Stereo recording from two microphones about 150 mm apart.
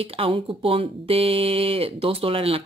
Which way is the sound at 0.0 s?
40° right (ahead or behind).